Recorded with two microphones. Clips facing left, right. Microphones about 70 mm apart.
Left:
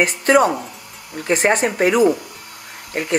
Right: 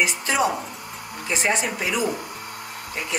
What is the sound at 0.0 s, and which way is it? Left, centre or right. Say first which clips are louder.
Speech: left 7 dB; left.